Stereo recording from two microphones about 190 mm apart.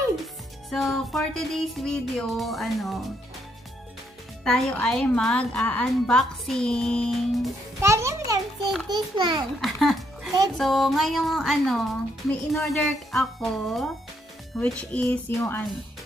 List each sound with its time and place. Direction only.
0.7 s speech: centre (ahead or behind)
4.5 s speech: 5° left (ahead or behind)
7.8 s a sound: 15° right (ahead or behind)
8.8 s a child's voice: 20° right (ahead or behind)
9.6 s music: centre (ahead or behind)
10.6 s speech: centre (ahead or behind)